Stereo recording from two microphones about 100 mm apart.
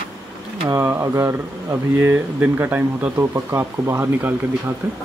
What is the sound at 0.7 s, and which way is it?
Speech, 25° right (ahead or behind).